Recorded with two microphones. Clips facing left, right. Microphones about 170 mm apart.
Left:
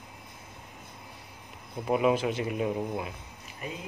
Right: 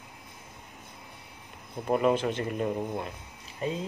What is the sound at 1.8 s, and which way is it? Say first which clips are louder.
Speech: even; 5° left (ahead or behind).